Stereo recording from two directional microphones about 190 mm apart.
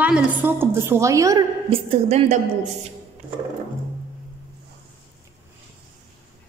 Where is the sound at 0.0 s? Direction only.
10° right (ahead or behind).